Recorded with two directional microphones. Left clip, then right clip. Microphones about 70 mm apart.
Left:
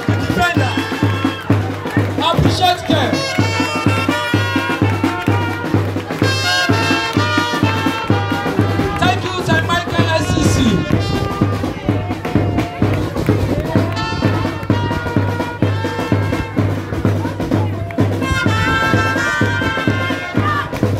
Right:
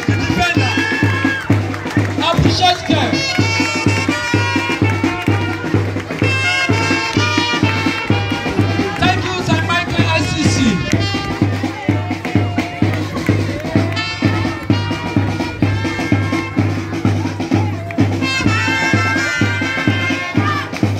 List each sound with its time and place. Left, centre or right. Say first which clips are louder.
2.2 s music: right 1 dB; left
3.9 s music: even; left
6.2 s music: even; left
13.3 s music: left 1 dB; left